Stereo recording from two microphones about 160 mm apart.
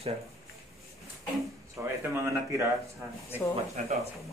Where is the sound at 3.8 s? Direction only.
50° right (ahead or behind).